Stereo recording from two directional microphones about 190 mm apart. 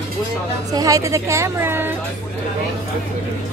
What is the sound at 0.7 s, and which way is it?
Speech, 20° right (ahead or behind).